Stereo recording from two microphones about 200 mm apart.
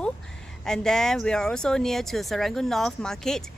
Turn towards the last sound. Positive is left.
turn(degrees=0)  # may be behind; listen again after turning